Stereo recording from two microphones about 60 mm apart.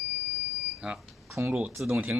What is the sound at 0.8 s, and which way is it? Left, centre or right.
Speech, centre.